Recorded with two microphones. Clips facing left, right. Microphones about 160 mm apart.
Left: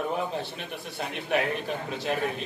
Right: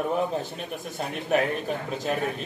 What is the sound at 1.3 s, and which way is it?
Speech, 40° right (ahead or behind).